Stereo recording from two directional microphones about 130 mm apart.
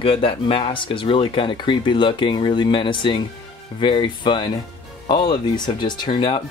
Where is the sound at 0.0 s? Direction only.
45° left (ahead or behind).